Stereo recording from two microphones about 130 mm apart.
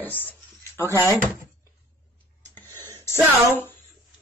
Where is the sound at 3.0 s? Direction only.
20° left (ahead or behind).